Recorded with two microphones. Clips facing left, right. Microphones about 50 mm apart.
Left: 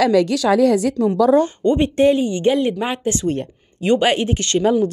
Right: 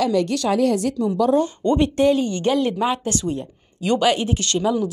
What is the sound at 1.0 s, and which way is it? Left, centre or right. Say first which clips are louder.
Speech: left 4 dB; left.